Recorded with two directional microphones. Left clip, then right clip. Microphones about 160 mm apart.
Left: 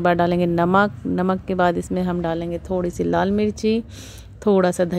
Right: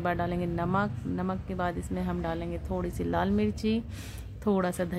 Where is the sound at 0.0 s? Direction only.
50° left (ahead or behind); by 4.5 s 30° left (ahead or behind).